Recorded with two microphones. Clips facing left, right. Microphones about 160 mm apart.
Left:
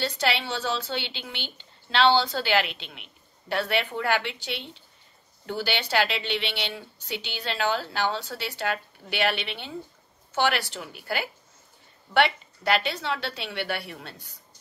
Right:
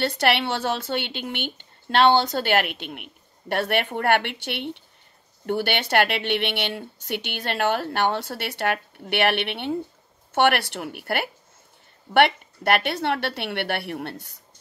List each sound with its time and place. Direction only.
0.0 s a woman's voice: 60° right (ahead or behind)